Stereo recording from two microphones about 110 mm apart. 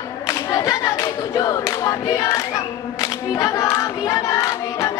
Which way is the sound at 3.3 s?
30° left (ahead or behind).